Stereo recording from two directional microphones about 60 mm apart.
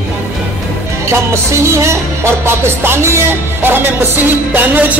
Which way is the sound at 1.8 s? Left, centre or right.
Right.